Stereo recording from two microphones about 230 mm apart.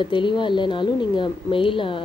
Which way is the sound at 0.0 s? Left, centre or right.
Left.